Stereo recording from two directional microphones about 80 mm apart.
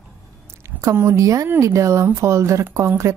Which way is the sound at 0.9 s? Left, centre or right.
Right.